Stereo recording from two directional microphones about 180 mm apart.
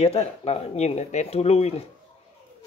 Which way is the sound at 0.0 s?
35° left (ahead or behind).